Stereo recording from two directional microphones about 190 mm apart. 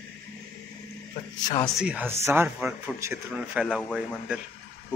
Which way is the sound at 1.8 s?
5° right (ahead or behind).